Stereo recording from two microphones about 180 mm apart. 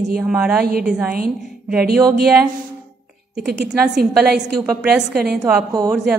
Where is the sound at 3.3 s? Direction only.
65° right (ahead or behind).